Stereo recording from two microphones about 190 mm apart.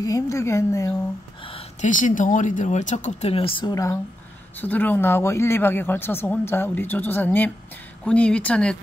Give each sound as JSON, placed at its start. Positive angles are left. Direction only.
{"t": 0.0, "sound": "speech", "side_deg": 15}
{"t": 1.4, "sound": "speech", "side_deg": 30}